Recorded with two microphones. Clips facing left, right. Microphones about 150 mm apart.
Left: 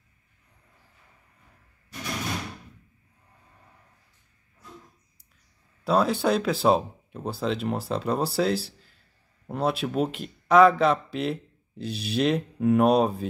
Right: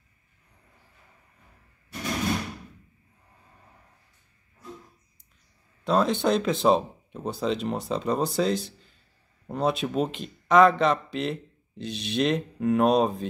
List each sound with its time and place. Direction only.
5.9 s speech: 5° left (ahead or behind)